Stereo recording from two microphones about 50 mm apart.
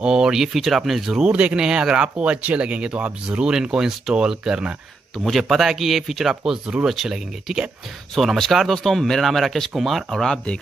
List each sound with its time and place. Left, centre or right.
0.0 s speech: centre
1.3 s speech: right
5.2 s speech: centre
8.1 s speech: centre
10.2 s speech: centre